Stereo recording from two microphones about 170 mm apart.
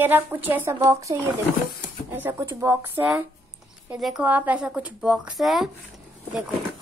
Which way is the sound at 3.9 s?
5° right (ahead or behind).